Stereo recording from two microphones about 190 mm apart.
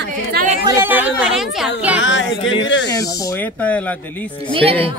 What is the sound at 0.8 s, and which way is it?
Speech, 10° right (ahead or behind).